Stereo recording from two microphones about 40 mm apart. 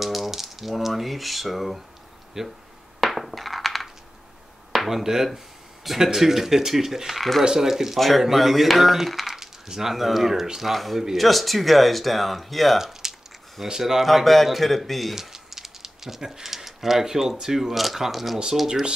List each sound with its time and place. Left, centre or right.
0.0 s speech: centre
3.0 s coin: centre
4.7 s speech: centre
13.0 s a sound: centre
13.7 s speech: centre
14.0 s speech: centre
18.7 s speech: centre